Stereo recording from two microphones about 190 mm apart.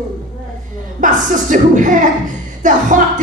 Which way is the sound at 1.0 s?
45° right (ahead or behind).